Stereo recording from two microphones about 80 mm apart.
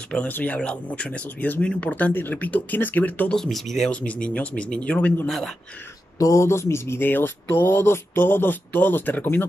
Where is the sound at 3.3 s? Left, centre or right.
Centre.